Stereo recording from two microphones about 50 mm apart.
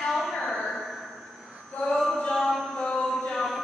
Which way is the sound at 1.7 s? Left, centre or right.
Left.